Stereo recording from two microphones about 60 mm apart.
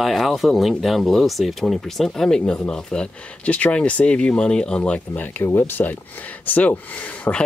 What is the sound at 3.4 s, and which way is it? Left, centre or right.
Speech, left.